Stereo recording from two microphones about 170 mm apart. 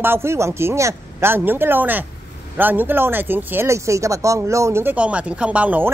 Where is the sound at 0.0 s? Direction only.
15° right (ahead or behind).